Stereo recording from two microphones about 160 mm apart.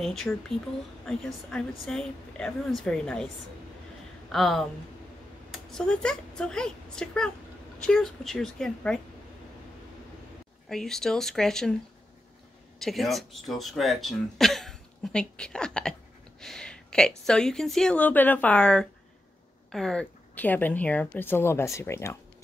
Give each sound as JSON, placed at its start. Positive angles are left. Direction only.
{"t": 0.0, "sound": "a woman's voice", "side_deg": 5}
{"t": 4.3, "sound": "a woman's voice", "side_deg": 0}
{"t": 10.7, "sound": "a woman's voice", "side_deg": 0}
{"t": 12.7, "sound": "speech", "side_deg": 0}
{"t": 16.3, "sound": "a sound", "side_deg": 5}
{"t": 17.3, "sound": "a woman's voice", "side_deg": 5}